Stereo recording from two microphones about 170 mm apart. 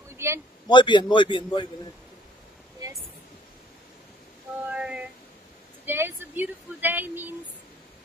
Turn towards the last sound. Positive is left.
turn(degrees=-10)  # may be behind; listen again after turning